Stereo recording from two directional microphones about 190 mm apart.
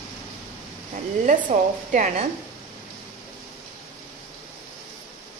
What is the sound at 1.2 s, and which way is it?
A woman's voice, 40° right (ahead or behind).